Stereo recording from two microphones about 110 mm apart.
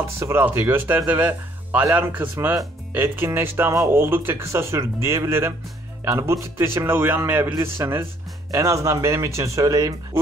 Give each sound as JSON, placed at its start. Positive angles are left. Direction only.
{"t": 0.0, "sound": "speech", "side_deg": -25}